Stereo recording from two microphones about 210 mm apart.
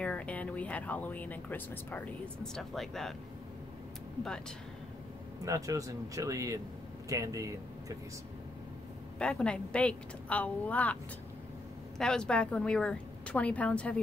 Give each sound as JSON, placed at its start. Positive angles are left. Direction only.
{"t": 0.0, "sound": "speech", "side_deg": 5}
{"t": 5.4, "sound": "speech", "side_deg": -15}
{"t": 9.2, "sound": "a woman's voice", "side_deg": 5}
{"t": 12.0, "sound": "a woman's voice", "side_deg": 5}